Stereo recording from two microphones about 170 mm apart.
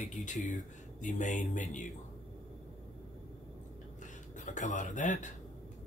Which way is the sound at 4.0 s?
45° left (ahead or behind).